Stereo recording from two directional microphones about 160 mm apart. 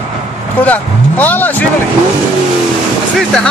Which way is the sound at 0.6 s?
10° left (ahead or behind).